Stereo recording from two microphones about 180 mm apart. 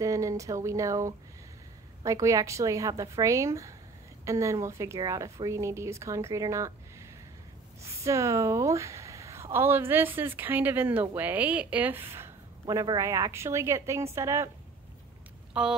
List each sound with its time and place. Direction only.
0.0 s a woman's voice: 15° right (ahead or behind)
15.5 s speech: 5° right (ahead or behind)